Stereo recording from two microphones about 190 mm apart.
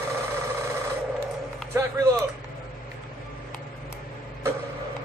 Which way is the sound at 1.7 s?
15° right (ahead or behind).